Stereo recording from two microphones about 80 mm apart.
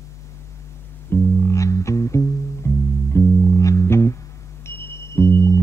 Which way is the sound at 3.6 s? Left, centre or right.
Left.